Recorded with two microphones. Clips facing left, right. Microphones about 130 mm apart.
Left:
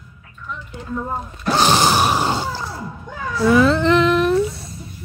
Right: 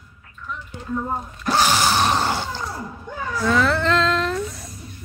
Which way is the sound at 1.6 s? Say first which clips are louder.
Left 3 dB; 20° left (ahead or behind).